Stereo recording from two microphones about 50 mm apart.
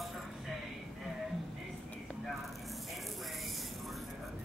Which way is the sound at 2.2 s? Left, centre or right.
Centre.